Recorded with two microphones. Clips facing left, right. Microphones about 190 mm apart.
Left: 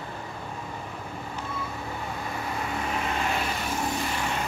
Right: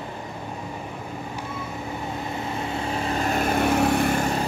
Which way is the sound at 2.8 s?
30° right (ahead or behind).